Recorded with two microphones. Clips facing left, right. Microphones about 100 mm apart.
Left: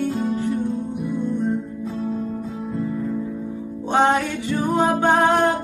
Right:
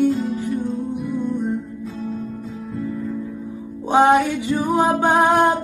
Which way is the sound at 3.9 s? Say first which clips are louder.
Right 4 dB; 10° right (ahead or behind).